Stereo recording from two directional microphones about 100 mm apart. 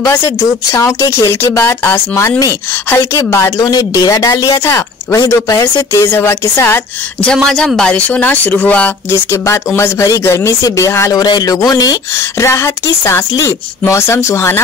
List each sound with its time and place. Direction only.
0.0 s speech: 35° left (ahead or behind)
7.4 s speech: 5° left (ahead or behind)
9.1 s speech: 30° left (ahead or behind)
11.1 s speech: 40° left (ahead or behind)